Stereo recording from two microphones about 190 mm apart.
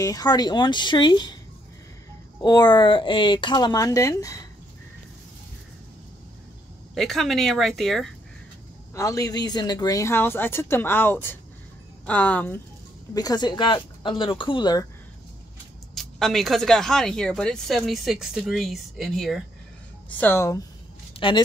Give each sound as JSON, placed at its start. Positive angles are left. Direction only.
{"t": 0.0, "sound": "speech", "side_deg": 20}
{"t": 2.4, "sound": "speech", "side_deg": 20}
{"t": 7.0, "sound": "speech", "side_deg": 0}
{"t": 8.9, "sound": "speech", "side_deg": 15}
{"t": 13.1, "sound": "speech", "side_deg": 20}
{"t": 15.9, "sound": "speech", "side_deg": 0}
{"t": 21.2, "sound": "speech", "side_deg": 25}